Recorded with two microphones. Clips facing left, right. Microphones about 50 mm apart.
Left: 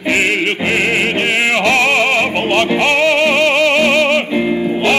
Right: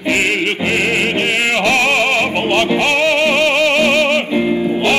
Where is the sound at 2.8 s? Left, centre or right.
Centre.